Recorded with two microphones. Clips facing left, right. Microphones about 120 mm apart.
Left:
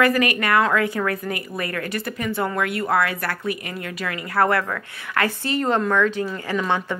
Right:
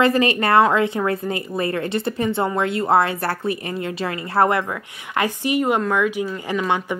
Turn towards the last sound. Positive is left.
turn(degrees=-15)  # may be behind; listen again after turning